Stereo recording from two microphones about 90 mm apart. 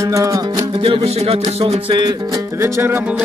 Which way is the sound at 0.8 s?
90° right.